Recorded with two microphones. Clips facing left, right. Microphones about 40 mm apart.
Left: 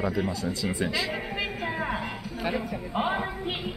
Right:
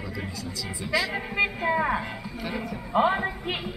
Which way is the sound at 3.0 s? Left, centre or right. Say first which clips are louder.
Right 5 dB; centre.